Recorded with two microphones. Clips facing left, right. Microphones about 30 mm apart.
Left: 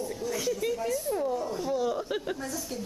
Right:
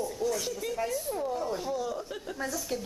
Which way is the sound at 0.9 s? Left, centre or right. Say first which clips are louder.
Left 3 dB; centre.